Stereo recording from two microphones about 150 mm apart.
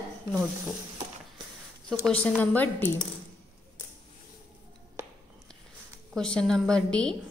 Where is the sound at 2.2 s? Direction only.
10° left (ahead or behind).